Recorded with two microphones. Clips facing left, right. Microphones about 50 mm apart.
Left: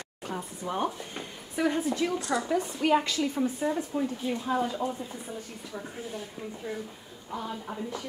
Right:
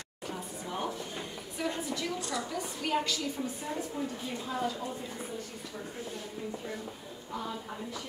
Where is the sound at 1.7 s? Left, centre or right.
Left.